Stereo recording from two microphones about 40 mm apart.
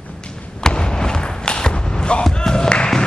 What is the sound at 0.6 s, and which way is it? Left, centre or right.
Basketball bounce, centre.